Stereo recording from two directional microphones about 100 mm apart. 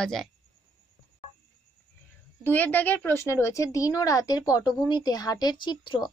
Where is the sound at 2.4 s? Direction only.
20° left (ahead or behind).